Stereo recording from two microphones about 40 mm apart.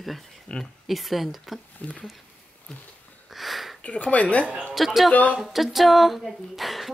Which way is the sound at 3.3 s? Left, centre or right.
Centre.